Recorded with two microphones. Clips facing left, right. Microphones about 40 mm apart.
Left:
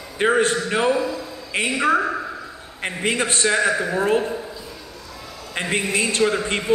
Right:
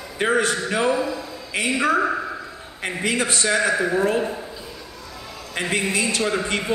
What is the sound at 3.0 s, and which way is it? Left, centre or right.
Speech, left.